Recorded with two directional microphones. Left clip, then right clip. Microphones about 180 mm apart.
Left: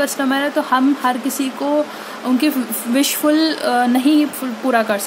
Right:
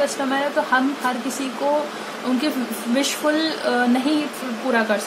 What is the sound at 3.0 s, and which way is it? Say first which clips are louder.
Speech: left 5 dB; 50° left (ahead or behind).